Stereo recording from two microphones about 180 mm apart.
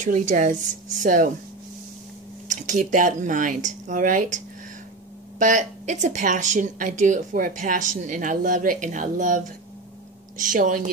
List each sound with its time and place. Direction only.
0.0 s a woman's voice: 45° right (ahead or behind)
2.4 s a woman's voice: 45° right (ahead or behind)
5.4 s a woman's voice: 40° right (ahead or behind)